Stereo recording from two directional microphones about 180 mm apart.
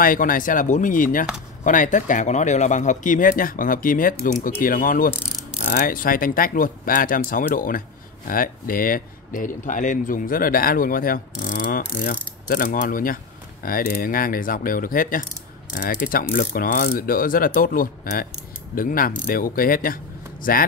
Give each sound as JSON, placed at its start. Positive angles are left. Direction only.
{"t": 0.0, "sound": "speech", "side_deg": 50}